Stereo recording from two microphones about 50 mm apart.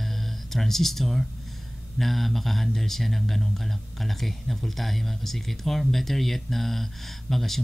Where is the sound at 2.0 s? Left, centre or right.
Centre.